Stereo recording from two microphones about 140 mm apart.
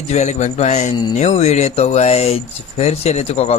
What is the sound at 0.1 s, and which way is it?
Speech, 55° left (ahead or behind).